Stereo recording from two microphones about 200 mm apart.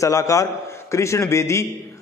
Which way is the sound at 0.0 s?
15° left (ahead or behind).